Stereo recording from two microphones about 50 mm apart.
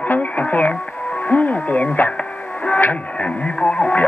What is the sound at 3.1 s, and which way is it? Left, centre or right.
Speech, left.